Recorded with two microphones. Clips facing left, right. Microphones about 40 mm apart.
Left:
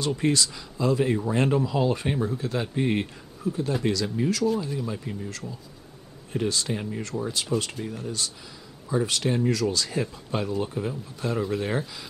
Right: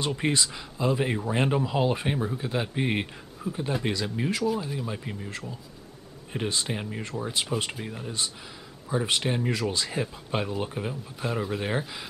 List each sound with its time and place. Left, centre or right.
0.0 s speech: right
3.4 s a sound: right
3.8 s speech: right